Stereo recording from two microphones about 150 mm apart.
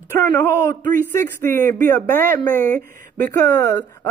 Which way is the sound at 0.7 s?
15° left (ahead or behind).